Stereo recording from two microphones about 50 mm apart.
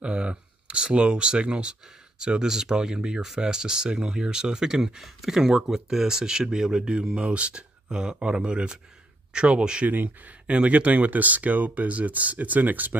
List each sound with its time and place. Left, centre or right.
0.0 s speech: centre; by 12.9 s right